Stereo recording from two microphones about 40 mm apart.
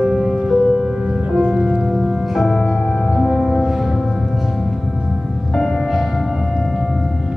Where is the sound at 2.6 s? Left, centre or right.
Centre.